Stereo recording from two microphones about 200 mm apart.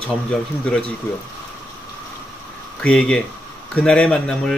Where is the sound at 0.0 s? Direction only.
5° left (ahead or behind).